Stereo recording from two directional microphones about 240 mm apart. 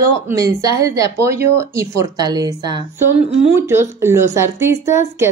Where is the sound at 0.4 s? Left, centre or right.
Centre.